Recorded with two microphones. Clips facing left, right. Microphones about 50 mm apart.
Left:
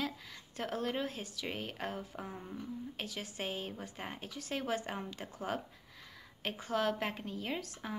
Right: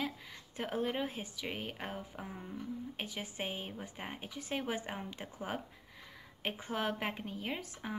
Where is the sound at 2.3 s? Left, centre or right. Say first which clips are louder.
Left 1 dB; centre.